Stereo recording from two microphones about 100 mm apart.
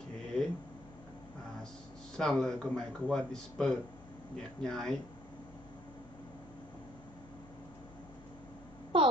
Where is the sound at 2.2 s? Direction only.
5° left (ahead or behind).